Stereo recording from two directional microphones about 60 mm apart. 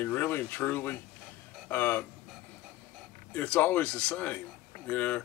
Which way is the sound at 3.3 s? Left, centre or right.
Left.